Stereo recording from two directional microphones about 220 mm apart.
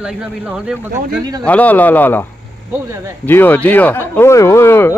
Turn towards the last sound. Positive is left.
turn(degrees=10)  # may be behind; listen again after turning